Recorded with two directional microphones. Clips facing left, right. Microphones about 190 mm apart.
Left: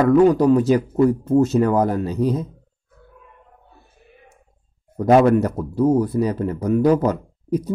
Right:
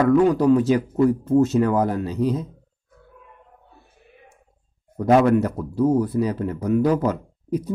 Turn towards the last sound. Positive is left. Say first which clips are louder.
# left 3 dB
turn(degrees=40)  # may be behind; listen again after turning